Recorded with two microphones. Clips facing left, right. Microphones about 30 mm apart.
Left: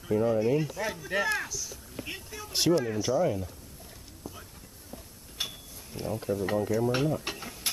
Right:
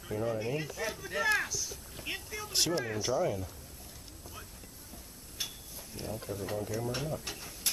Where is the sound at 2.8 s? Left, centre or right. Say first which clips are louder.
Left 5 dB; centre.